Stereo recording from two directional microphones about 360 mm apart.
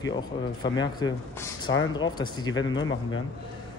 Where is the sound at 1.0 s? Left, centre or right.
Centre.